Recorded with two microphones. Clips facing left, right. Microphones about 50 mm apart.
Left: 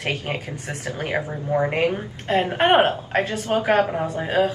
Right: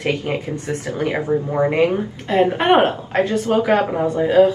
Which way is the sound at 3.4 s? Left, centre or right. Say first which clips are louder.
Right 4 dB; left.